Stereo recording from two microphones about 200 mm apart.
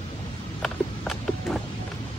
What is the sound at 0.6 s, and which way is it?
Run, centre (ahead or behind).